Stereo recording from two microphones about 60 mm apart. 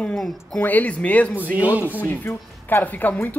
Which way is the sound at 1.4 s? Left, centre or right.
Right.